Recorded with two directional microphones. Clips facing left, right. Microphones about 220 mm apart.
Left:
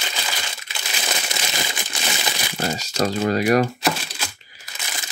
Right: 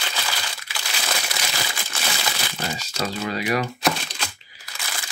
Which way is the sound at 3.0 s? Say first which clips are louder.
Left 7 dB; 45° left (ahead or behind).